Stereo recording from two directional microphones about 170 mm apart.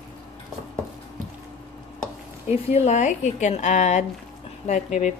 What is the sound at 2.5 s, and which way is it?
A woman's voice, 40° left (ahead or behind).